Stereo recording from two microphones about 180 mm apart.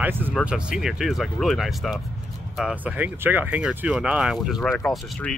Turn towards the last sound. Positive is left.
turn(degrees=5)  # may be behind; listen again after turning